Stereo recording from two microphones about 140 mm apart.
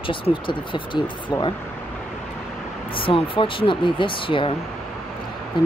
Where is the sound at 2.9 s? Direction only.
40° left (ahead or behind).